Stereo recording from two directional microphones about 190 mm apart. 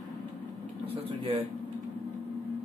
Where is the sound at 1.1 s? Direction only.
30° right (ahead or behind).